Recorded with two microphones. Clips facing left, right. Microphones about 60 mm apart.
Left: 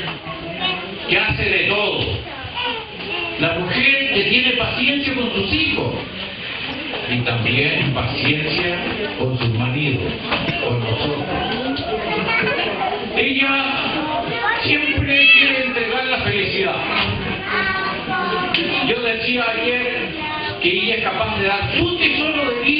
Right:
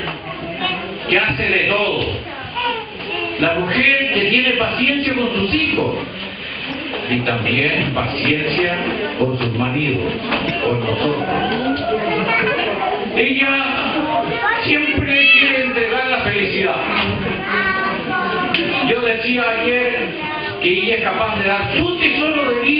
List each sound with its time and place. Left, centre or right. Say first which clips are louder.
1.2 s speech: right 2 dB; centre
4.1 s a man's voice: right 2 dB; centre
4.8 s speech: right 2 dB; centre
7.2 s speech: right 1 dB; centre
11.1 s speech: right 4 dB; centre
11.5 s a sound: right 4 dB; centre
13.6 s speech: right 2 dB; centre
15.7 s a sound: right 3 dB; centre
16.0 s a sound: right 3 dB; centre
16.6 s music: right 2 dB; centre
19.2 s speech: right 2 dB; centre
21.2 s speech: right 2 dB; centre